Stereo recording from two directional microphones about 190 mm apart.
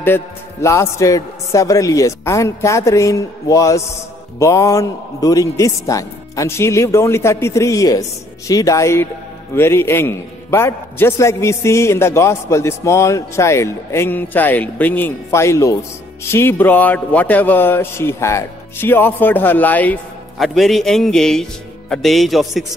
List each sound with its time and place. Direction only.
0.0 s speech: 15° left (ahead or behind)